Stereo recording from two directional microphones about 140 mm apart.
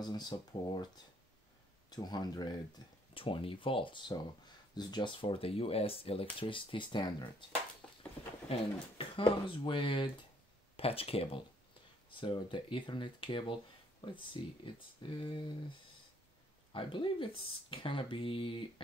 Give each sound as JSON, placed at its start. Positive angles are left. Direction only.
{"t": 0.0, "sound": "speech", "side_deg": 30}
{"t": 8.5, "sound": "speech", "side_deg": 40}
{"t": 16.7, "sound": "speech", "side_deg": 40}